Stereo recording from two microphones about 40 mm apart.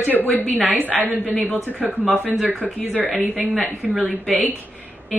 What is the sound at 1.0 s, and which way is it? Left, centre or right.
Speech, left.